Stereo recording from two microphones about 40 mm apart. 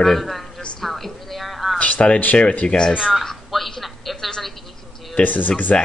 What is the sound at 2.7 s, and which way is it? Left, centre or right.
Speech, left.